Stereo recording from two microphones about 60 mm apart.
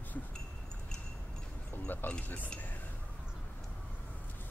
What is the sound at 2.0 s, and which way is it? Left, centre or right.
Speech, left.